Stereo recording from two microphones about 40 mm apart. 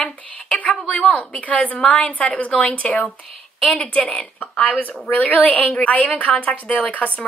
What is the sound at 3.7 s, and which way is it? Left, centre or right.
Speech, left.